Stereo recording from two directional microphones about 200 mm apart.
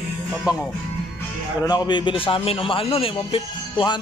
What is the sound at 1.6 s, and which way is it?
A man's voice, 20° left (ahead or behind).